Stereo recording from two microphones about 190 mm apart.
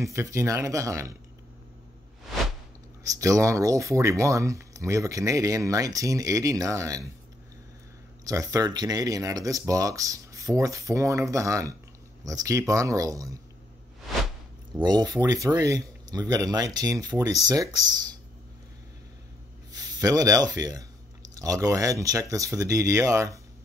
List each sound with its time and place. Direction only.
0.0 s speech: 15° right (ahead or behind)
3.2 s speech: 15° right (ahead or behind)
8.3 s speech: 15° right (ahead or behind)
14.8 s speech: 20° right (ahead or behind)
19.7 s speech: 20° right (ahead or behind)